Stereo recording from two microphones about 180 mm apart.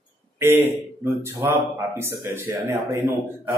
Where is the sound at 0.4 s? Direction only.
15° right (ahead or behind).